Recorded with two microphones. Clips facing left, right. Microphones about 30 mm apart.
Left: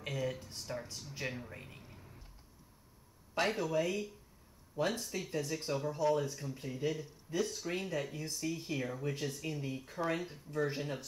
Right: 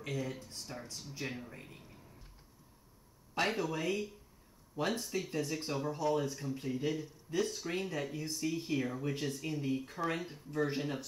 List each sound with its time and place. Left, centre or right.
0.1 s speech: centre
3.3 s speech: centre